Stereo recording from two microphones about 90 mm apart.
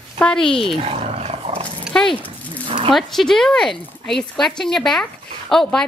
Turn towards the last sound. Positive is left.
turn(degrees=5)  # may be behind; listen again after turning